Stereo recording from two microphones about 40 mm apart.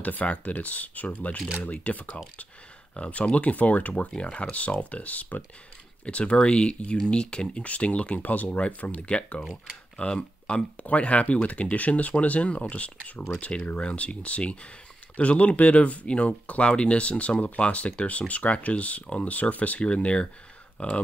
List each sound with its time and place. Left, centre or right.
0.0 s speech: left
6.0 s speech: left
8.2 s speech: left
8.5 s speech: left
9.4 s speech: centre
10.0 s speech: left